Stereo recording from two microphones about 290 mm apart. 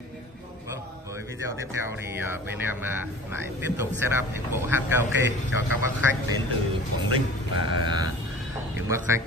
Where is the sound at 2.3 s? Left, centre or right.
Centre.